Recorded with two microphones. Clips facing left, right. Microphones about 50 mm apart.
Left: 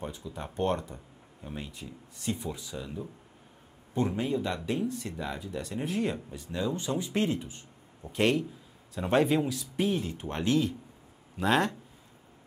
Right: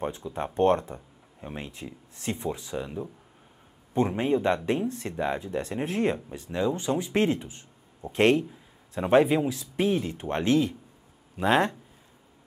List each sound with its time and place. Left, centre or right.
0.0 s speech: right
8.9 s speech: right
9.5 s speech: right